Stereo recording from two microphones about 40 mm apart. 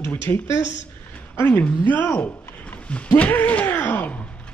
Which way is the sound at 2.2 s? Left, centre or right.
Left.